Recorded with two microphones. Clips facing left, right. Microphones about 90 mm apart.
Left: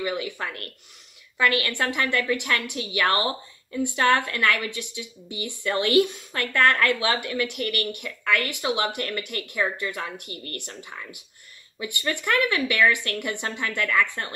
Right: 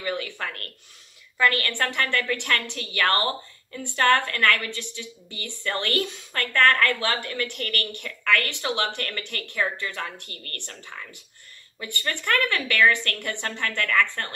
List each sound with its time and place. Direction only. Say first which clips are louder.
0.0 s a woman's voice: left 1 dB; 15° left (ahead or behind)
1.6 s a woman's voice: left 1 dB; 15° left (ahead or behind)
10.2 s speech: left 5 dB; 50° right (ahead or behind)
10.8 s a woman's voice: left 1 dB; 10° left (ahead or behind)